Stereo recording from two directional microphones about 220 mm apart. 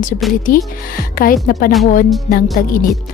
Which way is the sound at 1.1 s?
40° left (ahead or behind).